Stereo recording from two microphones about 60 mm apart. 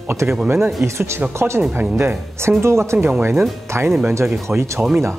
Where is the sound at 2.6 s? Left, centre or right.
Right.